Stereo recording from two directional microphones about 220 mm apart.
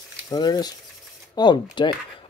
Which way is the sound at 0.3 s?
20° left (ahead or behind).